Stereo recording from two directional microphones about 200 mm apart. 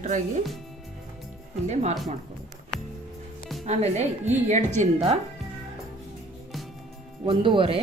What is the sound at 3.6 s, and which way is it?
Speech, 35° right (ahead or behind).